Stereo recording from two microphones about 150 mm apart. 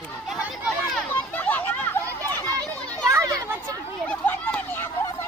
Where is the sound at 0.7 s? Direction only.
5° left (ahead or behind).